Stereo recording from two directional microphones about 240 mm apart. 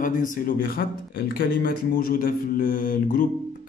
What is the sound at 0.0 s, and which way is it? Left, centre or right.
Speech, left.